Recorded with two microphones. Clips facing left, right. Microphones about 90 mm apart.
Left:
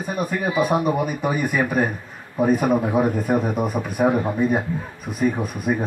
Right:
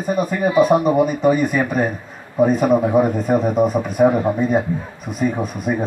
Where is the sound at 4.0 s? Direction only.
Centre (ahead or behind).